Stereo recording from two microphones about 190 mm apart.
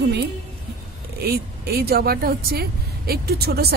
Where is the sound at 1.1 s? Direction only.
55° right (ahead or behind).